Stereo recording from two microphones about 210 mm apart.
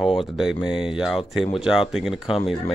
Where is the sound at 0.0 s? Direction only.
Centre (ahead or behind).